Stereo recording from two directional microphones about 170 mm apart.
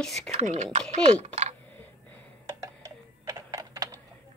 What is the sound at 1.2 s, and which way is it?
Typing, 40° right (ahead or behind).